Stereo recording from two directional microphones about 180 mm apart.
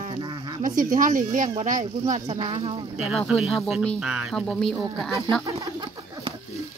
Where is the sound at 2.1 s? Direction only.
30° right (ahead or behind).